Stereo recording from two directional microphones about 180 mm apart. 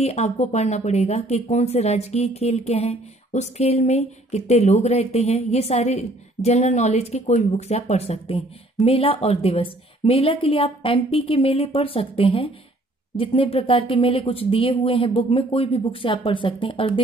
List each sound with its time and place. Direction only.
0.0 s speech: 35° left (ahead or behind)